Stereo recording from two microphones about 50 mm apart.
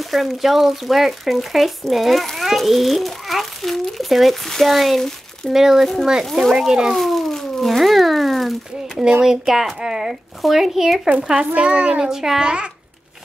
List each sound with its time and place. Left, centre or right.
0.0 s speech: centre
5.5 s speech: centre
6.9 s a sound: centre
9.2 s speech: centre
11.1 s a child's voice: centre
12.0 s speech: centre